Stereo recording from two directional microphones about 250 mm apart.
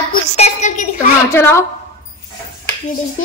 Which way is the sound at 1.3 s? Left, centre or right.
Centre.